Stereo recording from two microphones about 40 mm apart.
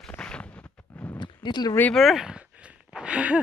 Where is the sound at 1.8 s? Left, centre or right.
Left.